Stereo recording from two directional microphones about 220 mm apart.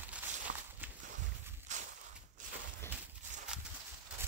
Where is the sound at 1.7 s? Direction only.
35° right (ahead or behind).